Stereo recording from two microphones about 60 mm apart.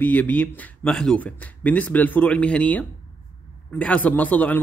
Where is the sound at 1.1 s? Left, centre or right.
Left.